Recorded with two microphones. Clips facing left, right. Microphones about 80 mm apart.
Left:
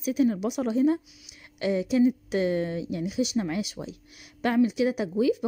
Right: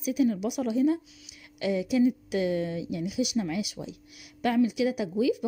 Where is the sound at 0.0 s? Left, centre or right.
Left.